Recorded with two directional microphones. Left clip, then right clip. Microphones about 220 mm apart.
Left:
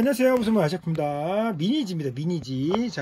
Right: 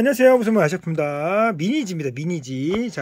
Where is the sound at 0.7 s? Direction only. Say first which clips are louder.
Right 5 dB; 25° right (ahead or behind).